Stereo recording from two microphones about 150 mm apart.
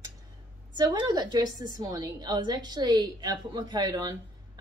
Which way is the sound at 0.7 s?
25° right (ahead or behind).